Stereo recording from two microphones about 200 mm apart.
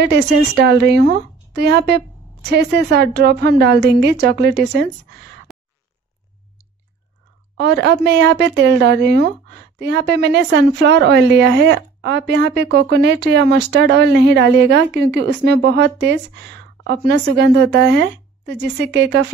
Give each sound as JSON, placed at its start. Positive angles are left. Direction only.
{"t": 0.0, "sound": "a woman's voice", "side_deg": -55}
{"t": 5.5, "sound": "fart", "side_deg": 0}
{"t": 7.5, "sound": "a woman's voice", "side_deg": -60}